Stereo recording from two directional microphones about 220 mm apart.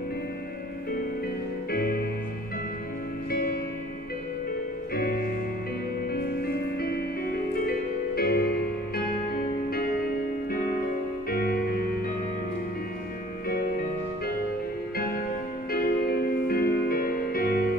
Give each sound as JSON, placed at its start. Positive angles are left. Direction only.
{"t": 1.7, "sound": "music", "side_deg": 45}
{"t": 3.3, "sound": "music", "side_deg": 45}
{"t": 6.1, "sound": "music", "side_deg": 45}
{"t": 15.0, "sound": "music", "side_deg": 45}